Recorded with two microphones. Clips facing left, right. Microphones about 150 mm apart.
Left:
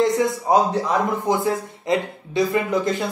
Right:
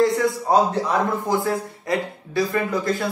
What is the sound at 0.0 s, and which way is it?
A man's voice, 20° left (ahead or behind).